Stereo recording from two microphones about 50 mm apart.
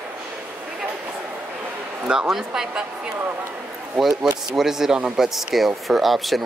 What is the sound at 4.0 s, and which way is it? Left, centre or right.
Speech, centre.